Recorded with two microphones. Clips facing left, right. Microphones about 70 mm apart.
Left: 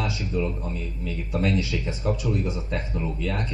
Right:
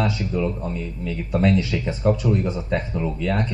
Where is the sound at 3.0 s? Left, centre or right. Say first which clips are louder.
Right 5 dB; right.